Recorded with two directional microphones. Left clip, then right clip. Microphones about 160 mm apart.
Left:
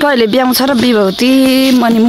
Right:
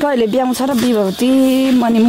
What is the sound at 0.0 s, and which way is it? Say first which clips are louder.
Speech: left 5 dB; 15° left (ahead or behind).